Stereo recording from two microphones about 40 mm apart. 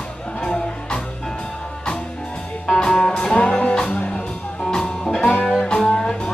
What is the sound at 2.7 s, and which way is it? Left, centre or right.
Music, centre.